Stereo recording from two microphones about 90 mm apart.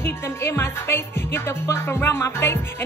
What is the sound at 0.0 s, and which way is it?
Music, 25° left (ahead or behind).